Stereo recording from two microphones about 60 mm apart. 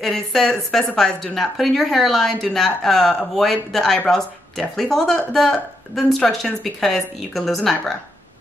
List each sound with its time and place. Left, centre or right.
0.0 s speech: centre